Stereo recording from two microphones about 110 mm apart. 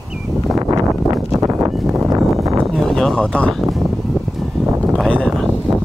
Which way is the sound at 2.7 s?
5° left (ahead or behind).